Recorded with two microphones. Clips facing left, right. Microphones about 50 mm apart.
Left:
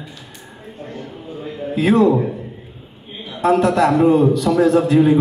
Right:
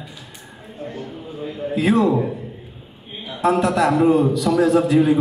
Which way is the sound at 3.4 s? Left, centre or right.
Left.